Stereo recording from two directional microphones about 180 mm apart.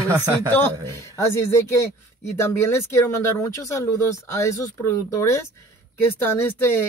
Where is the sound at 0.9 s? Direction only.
15° left (ahead or behind).